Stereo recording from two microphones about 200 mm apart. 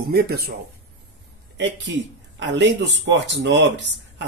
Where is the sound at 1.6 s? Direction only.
65° right (ahead or behind).